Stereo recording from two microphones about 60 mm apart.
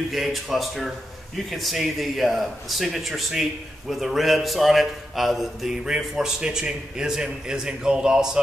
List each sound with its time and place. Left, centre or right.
0.1 s a man's voice: centre